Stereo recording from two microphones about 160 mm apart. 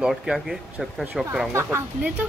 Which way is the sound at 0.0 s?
Centre (ahead or behind).